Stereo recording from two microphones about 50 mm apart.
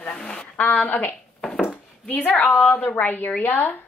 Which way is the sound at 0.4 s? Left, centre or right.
Left.